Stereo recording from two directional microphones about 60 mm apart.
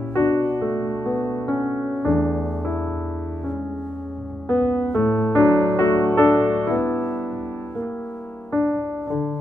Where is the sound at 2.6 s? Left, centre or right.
Left.